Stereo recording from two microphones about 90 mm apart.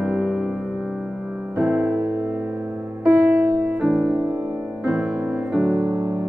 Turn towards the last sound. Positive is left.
turn(degrees=-50)  # may be behind; listen again after turning